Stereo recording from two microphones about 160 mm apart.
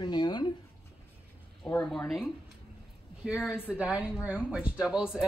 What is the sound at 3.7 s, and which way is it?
Speech, 5° right (ahead or behind).